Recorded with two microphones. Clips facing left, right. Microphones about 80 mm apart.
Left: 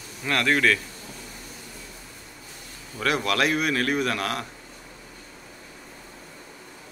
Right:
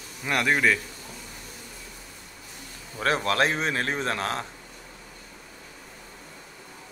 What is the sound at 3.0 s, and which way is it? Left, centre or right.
A man's voice, right.